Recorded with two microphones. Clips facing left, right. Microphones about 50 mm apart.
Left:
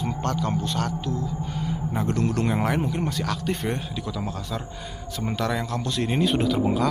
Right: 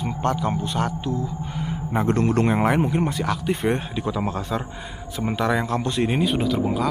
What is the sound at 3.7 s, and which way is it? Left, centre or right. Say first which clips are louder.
Speech: right 5 dB; right.